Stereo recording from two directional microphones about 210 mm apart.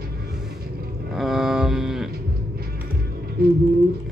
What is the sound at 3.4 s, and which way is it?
Speech, 45° right (ahead or behind).